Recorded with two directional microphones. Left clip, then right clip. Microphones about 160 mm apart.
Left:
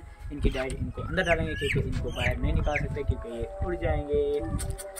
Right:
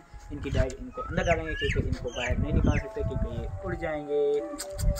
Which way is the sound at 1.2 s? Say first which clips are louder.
Left 1 dB; 90° left.